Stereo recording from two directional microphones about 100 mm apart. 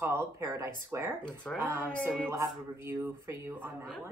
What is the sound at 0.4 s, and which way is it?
Speech, 30° right (ahead or behind).